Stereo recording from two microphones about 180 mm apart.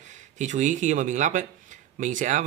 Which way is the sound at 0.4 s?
40° right (ahead or behind).